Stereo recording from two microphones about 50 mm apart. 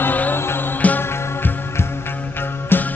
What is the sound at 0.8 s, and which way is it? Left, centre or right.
Music, left.